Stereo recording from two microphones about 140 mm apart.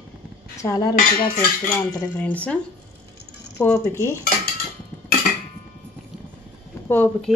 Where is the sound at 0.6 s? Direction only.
25° left (ahead or behind).